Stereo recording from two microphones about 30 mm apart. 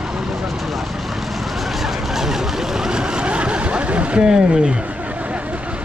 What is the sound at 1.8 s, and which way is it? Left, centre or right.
Vehicle, centre.